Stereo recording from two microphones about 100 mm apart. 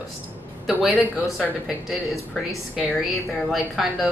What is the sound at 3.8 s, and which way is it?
Speech, centre (ahead or behind).